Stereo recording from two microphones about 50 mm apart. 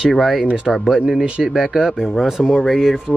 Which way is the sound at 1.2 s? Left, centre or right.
Centre.